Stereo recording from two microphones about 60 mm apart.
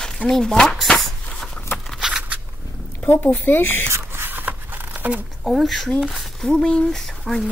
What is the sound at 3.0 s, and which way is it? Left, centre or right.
Speech, left.